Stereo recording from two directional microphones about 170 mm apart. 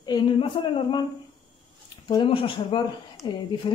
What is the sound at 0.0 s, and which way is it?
Speech, 25° left (ahead or behind).